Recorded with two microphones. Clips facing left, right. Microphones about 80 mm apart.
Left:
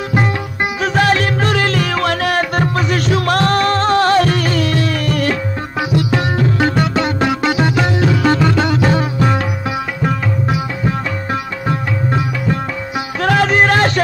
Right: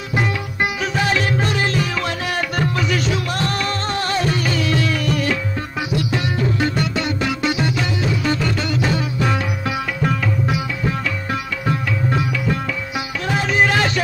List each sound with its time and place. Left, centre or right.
0.8 s music: left
2.0 s music: left
2.6 s music: left
3.3 s music: left
7.7 s music: left
13.2 s music: left